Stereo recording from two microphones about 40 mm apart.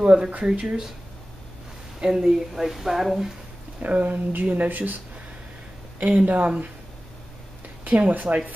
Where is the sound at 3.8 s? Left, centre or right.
Right.